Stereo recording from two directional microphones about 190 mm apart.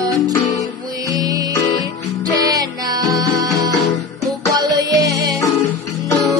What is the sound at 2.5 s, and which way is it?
Music, 20° right (ahead or behind).